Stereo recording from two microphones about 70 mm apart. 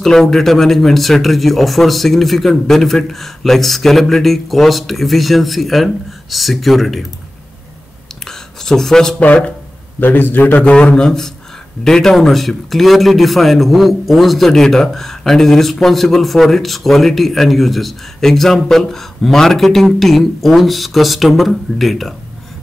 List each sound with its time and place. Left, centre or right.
0.0 s a man's voice: centre
8.3 s a sound: centre
9.2 s a man's voice: left; by 22.1 s centre